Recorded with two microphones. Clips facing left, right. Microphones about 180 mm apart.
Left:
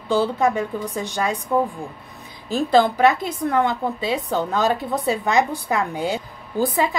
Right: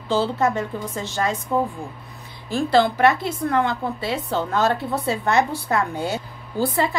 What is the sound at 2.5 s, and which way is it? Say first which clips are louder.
A woman's voice: left 1 dB; 15° left (ahead or behind).